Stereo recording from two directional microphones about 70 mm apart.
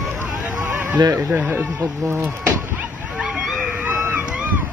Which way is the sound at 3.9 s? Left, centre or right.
Right.